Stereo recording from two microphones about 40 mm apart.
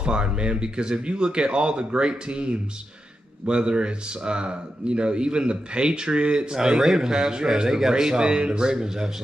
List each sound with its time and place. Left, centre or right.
0.0 s a man's voice: right